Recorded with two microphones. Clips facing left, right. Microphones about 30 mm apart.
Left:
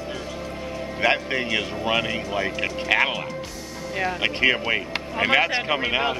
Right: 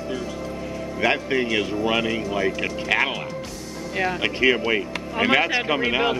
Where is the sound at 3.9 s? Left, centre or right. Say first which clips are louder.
Right 2 dB; centre.